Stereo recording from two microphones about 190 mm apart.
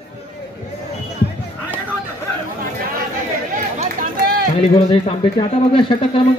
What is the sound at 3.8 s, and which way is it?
Run, 45° right (ahead or behind).